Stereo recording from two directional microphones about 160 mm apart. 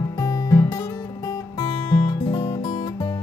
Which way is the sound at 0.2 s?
20° left (ahead or behind).